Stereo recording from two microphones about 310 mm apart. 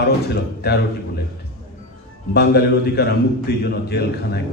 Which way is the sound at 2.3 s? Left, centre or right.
Left.